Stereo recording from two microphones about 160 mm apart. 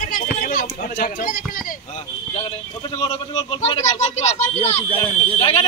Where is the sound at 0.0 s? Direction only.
55° left (ahead or behind).